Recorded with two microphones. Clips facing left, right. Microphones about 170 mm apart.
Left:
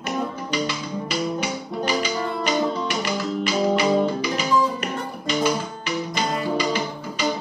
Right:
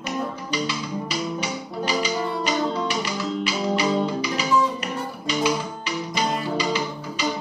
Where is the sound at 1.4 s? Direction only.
50° left (ahead or behind).